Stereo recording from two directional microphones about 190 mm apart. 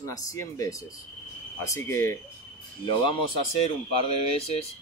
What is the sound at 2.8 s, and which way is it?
Speech, 25° left (ahead or behind).